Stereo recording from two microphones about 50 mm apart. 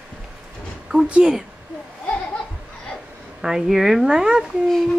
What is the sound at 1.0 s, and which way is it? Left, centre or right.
Speech, right.